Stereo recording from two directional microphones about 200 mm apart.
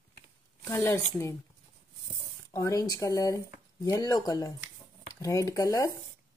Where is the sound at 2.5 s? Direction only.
15° left (ahead or behind).